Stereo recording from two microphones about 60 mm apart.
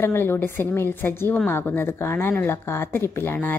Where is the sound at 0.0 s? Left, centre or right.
Left.